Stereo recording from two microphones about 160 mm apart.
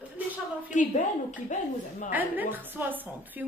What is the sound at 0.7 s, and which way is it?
Speech, 50° left (ahead or behind).